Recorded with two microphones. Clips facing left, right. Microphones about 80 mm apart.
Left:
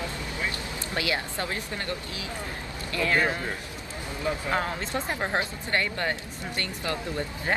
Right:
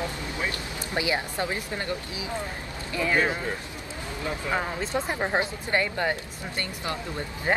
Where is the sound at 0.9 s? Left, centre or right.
Centre.